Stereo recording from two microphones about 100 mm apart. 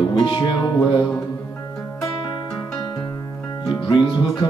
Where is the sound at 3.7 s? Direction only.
50° left (ahead or behind).